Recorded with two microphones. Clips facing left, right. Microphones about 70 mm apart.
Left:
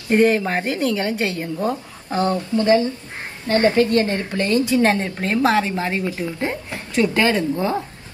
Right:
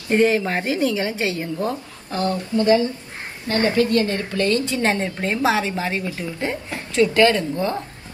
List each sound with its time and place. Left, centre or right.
0.1 s a woman's voice: centre
0.7 s a woman's voice: centre
1.7 s speech: left
4.6 s a woman's voice: centre
6.2 s a woman's voice: centre